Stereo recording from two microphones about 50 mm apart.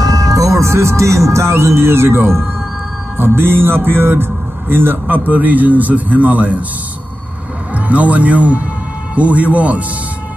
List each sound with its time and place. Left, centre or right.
0.4 s speech: right
7.7 s a man's voice: right